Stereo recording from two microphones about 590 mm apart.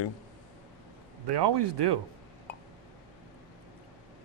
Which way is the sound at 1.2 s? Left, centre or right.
Right.